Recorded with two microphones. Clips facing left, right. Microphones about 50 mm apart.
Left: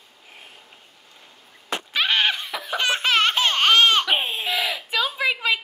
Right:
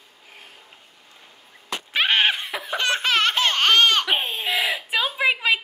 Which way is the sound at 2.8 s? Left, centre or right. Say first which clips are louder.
Left 1 dB; centre.